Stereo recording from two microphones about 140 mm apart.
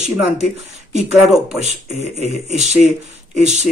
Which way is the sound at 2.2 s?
55° right (ahead or behind).